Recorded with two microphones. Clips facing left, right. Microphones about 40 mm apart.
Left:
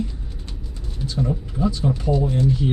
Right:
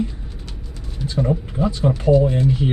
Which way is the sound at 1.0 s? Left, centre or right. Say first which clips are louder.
Right 3 dB; right.